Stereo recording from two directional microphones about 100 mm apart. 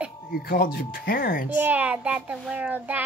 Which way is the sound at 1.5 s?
15° right (ahead or behind).